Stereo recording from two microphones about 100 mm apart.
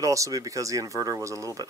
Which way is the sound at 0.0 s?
35° right (ahead or behind).